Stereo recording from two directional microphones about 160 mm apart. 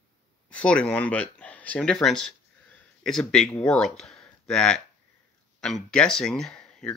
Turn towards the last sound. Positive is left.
turn(degrees=5)  # may be behind; listen again after turning